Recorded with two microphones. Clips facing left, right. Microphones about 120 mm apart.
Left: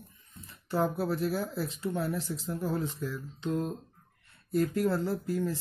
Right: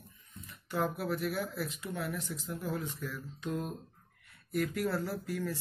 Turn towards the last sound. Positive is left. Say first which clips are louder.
# left 5 dB
turn(degrees=25)  # may be behind; listen again after turning